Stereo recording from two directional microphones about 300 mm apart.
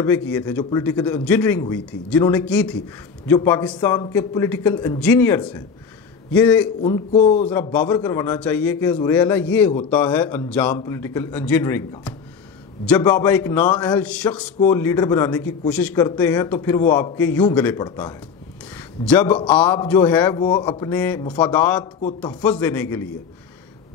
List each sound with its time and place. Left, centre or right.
0.0 s a man's voice: centre
6.8 s speech: centre
7.7 s a man's voice: centre